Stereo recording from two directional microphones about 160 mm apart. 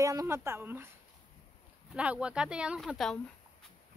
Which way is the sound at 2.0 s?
5° right (ahead or behind).